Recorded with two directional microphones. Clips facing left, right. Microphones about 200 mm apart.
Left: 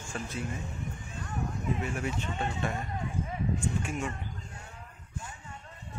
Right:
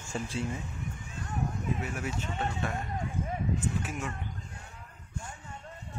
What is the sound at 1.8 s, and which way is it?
Speech, 5° right (ahead or behind).